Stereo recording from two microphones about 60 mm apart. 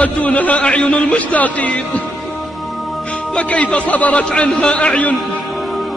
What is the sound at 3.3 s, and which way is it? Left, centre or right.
Speech, centre.